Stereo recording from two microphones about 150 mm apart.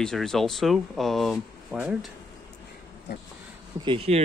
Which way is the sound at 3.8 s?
40° right (ahead or behind).